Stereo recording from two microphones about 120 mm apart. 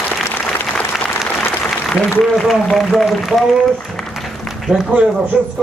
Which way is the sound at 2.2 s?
Centre (ahead or behind).